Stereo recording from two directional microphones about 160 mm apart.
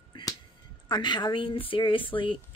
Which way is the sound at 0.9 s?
30° left (ahead or behind).